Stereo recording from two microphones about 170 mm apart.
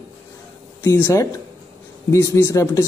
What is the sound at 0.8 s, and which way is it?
Speech, 15° left (ahead or behind).